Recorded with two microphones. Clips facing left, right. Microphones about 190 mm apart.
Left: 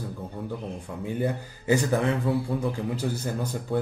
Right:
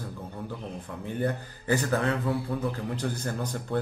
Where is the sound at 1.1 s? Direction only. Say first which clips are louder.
Even; 10° left (ahead or behind).